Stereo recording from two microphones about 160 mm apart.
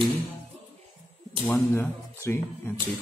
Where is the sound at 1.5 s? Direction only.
10° left (ahead or behind).